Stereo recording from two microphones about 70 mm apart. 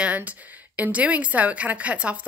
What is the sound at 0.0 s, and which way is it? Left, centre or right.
A woman's voice, right.